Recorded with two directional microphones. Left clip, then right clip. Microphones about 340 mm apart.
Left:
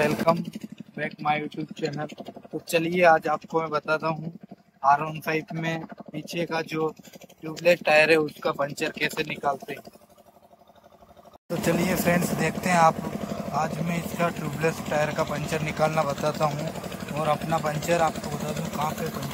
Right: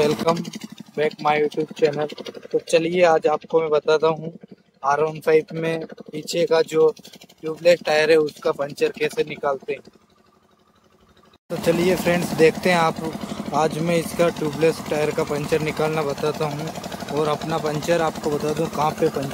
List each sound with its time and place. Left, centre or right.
0.0 s speech: centre
11.4 s speech: centre